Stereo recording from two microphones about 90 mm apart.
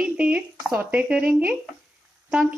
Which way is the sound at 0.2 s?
10° right (ahead or behind).